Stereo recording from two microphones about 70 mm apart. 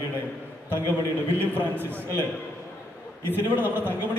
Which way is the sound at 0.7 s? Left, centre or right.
Right.